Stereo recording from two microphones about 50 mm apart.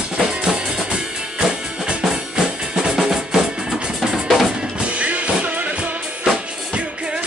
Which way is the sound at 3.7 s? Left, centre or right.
Centre.